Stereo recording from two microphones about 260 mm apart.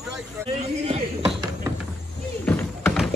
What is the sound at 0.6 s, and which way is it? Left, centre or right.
Speech, right.